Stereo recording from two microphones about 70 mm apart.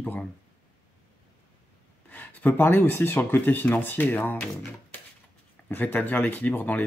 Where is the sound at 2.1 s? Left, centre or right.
Left.